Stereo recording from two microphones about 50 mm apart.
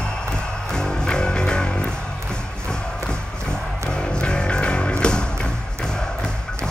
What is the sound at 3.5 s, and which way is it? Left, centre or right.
Music, centre.